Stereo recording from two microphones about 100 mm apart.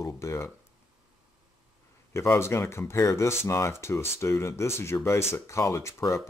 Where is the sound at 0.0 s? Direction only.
30° left (ahead or behind).